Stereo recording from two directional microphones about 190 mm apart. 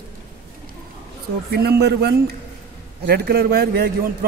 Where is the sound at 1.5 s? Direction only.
60° right (ahead or behind).